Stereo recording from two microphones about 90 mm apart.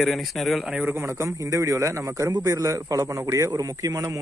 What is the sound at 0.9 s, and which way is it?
A man's voice, 30° right (ahead or behind).